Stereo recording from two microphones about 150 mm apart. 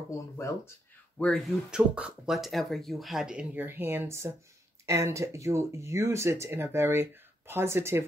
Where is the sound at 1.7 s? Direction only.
5° right (ahead or behind).